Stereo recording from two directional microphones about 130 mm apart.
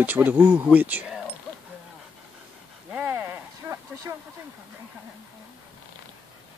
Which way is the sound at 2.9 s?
15° right (ahead or behind).